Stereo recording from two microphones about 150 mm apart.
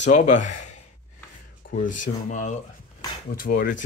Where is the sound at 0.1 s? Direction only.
55° left (ahead or behind).